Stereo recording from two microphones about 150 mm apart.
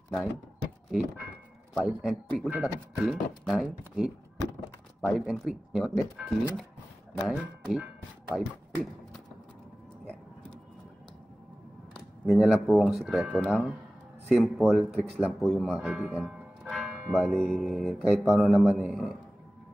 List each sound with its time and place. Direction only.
0.9 s speech: 5° right (ahead or behind)
12.3 s speech: centre (ahead or behind)
13.4 s speech: 5° left (ahead or behind)